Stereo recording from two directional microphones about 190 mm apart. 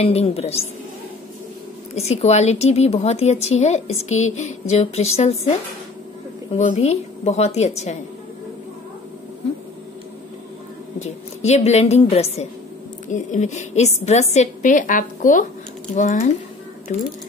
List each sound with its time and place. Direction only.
0.0 s a woman's voice: 30° left (ahead or behind)
2.0 s a woman's voice: 35° left (ahead or behind)
6.5 s a woman's voice: 35° left (ahead or behind)
11.0 s a woman's voice: 35° left (ahead or behind)